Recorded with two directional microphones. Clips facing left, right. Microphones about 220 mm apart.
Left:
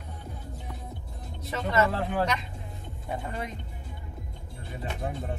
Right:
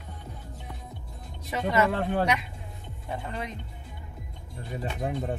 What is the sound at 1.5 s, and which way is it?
Speech, 10° right (ahead or behind).